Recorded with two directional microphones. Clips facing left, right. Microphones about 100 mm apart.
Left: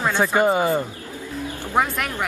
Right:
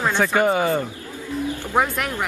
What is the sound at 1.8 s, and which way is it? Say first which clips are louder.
Speech: even; centre (ahead or behind).